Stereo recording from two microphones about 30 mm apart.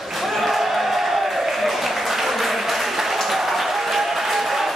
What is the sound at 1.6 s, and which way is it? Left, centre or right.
Applause, centre.